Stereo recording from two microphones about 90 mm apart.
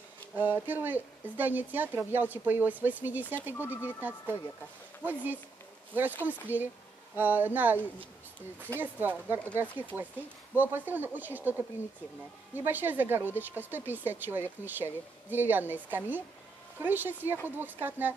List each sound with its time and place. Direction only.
0.4 s speech: 20° right (ahead or behind)
3.5 s speech: 25° left (ahead or behind)
5.0 s speech: 20° right (ahead or behind)